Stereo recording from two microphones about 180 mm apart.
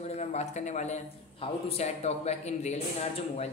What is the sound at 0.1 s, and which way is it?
A man's voice, 35° left (ahead or behind).